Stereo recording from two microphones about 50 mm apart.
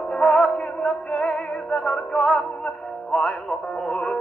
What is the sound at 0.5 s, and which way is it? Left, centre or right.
Music, left.